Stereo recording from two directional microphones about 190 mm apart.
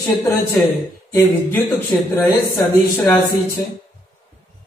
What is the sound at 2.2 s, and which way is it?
A woman's voice, 15° left (ahead or behind).